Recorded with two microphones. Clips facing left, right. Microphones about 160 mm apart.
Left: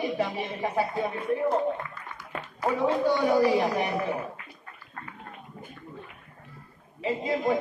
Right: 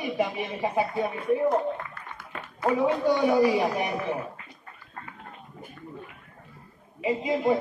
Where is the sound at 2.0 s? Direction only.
55° right (ahead or behind).